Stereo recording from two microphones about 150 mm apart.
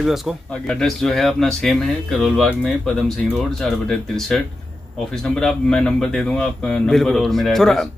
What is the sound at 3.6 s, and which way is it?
Speech, centre (ahead or behind).